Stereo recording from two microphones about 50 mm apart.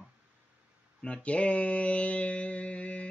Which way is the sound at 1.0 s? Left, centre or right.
Left.